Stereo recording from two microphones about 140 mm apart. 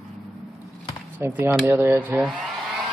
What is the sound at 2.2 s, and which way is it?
Hair dryer, centre (ahead or behind).